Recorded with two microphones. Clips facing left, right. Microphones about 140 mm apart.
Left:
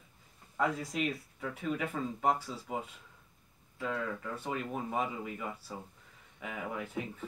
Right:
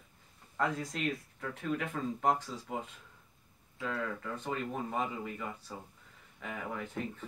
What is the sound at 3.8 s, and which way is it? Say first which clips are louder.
Speech: left 1 dB; 5° left (ahead or behind).